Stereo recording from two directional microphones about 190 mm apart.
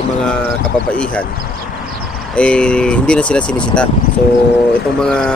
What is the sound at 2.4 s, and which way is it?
Speech, 5° left (ahead or behind).